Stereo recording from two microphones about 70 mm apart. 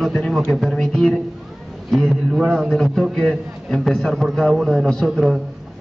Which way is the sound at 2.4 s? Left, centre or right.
Centre.